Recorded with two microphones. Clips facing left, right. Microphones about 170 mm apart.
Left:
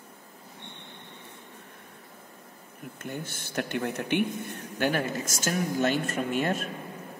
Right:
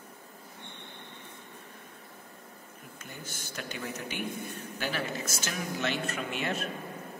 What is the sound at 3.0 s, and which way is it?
Speech, 60° left (ahead or behind).